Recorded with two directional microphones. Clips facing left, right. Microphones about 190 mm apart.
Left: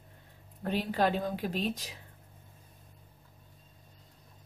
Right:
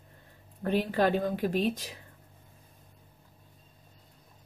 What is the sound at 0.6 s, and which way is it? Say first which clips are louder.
A woman's voice: right 3 dB; 50° right (ahead or behind).